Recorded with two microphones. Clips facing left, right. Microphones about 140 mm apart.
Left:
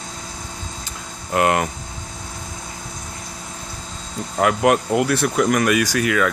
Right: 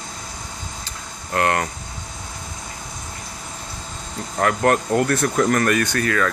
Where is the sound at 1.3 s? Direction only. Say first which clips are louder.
Left 3 dB; 15° left (ahead or behind).